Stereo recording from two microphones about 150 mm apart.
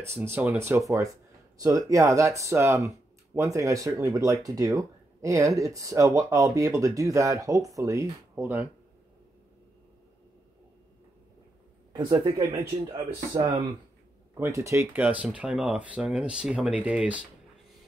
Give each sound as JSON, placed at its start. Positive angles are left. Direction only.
{"t": 0.2, "sound": "speech", "side_deg": -10}
{"t": 11.9, "sound": "speech", "side_deg": -30}